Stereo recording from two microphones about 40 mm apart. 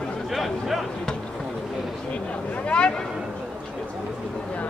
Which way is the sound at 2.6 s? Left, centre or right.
Left.